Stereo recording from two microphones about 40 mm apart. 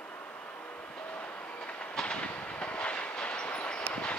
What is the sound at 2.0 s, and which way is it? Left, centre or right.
Train, left.